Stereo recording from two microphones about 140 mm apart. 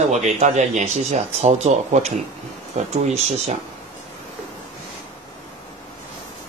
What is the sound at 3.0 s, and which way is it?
Speech, 50° right (ahead or behind).